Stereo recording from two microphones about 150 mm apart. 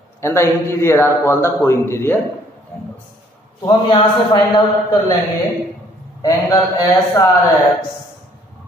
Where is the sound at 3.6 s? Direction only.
25° left (ahead or behind).